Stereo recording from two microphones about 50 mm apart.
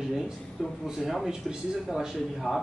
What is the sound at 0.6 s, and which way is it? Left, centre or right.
Speech, centre.